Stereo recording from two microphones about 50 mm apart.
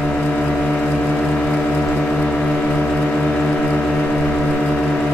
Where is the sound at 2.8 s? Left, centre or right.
Left.